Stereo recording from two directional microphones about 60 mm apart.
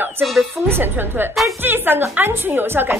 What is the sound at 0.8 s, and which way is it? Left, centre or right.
A woman's voice, right.